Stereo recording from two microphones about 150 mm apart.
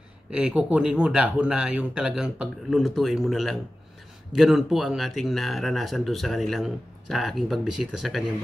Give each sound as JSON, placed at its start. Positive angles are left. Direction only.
{"t": 0.3, "sound": "speech", "side_deg": -5}